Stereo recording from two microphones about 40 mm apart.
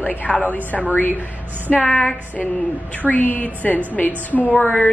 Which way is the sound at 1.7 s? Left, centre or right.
Left.